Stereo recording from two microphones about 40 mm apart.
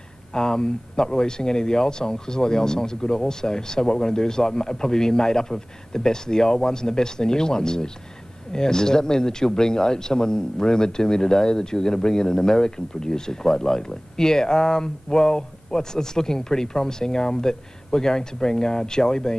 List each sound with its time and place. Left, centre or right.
0.3 s speech: centre